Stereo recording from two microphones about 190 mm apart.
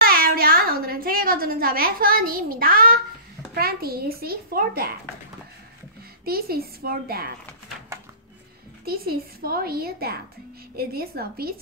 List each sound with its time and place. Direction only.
0.0 s a sound: 50° right (ahead or behind)
3.5 s a child's voice: 55° right (ahead or behind)
6.2 s a child's voice: 55° right (ahead or behind)
8.8 s a child's voice: 50° right (ahead or behind)